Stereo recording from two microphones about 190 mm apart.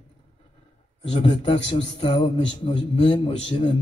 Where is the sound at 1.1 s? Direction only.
30° left (ahead or behind).